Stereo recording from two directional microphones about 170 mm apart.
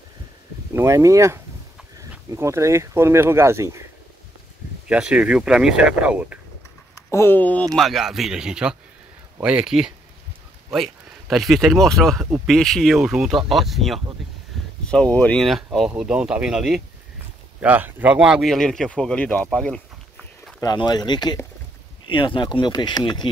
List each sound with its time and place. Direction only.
0.7 s speech: 15° right (ahead or behind)
4.8 s speech: 5° right (ahead or behind)
7.1 s speech: 15° left (ahead or behind)
7.7 s speech: centre (ahead or behind)
20.6 s speech: 25° left (ahead or behind)